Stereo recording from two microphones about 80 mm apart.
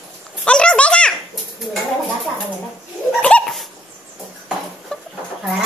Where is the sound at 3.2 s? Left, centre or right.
Centre.